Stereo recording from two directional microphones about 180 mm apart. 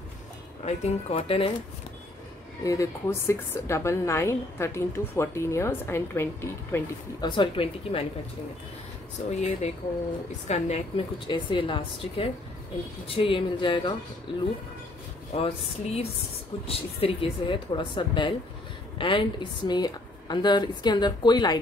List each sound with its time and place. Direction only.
0.7 s speech: 35° left (ahead or behind)
2.6 s a woman's voice: 20° left (ahead or behind)
7.2 s a woman's voice: 30° left (ahead or behind)
9.3 s a woman's voice: 40° left (ahead or behind)
15.3 s a woman's voice: 35° left (ahead or behind)